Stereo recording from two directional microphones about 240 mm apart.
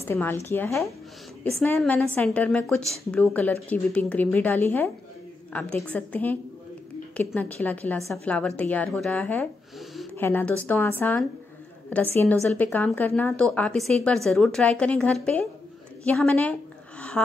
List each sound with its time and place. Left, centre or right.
0.0 s a woman's voice: centre